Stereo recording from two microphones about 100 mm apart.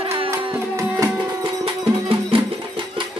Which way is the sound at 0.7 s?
35° right (ahead or behind).